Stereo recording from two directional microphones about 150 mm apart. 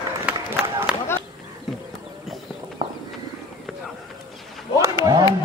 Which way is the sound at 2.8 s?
30° right (ahead or behind).